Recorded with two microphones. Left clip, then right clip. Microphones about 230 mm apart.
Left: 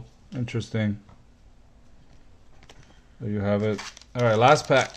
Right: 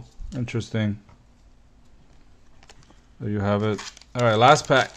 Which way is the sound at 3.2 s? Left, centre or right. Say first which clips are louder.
Right 1 dB; right.